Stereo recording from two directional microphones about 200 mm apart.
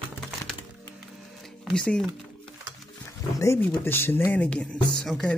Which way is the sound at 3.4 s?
15° left (ahead or behind).